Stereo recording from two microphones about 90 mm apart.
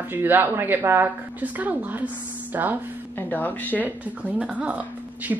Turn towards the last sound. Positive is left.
turn(degrees=-15)  # may be behind; listen again after turning